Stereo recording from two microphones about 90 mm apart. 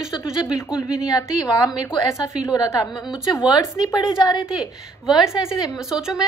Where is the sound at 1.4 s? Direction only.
45° left (ahead or behind).